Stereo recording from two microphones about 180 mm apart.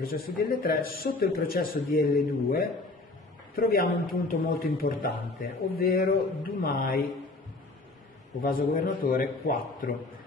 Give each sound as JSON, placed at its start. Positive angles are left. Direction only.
{"t": 0.0, "sound": "a man's voice", "side_deg": 55}
{"t": 8.4, "sound": "a man's voice", "side_deg": 50}